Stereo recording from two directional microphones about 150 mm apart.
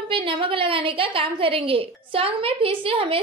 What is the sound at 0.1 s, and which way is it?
A woman's voice, 35° right (ahead or behind).